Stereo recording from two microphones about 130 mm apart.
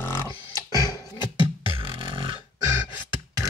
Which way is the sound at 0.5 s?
30° left (ahead or behind).